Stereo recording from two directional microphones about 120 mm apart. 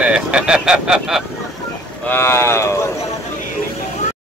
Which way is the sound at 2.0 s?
20° left (ahead or behind).